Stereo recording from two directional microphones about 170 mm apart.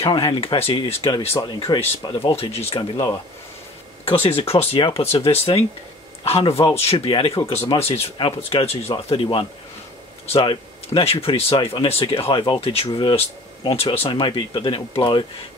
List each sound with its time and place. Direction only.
0.0 s speech: 30° left (ahead or behind)
4.0 s speech: 35° left (ahead or behind)